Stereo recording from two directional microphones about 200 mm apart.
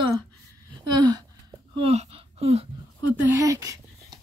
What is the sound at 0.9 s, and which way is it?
Speech, 20° right (ahead or behind).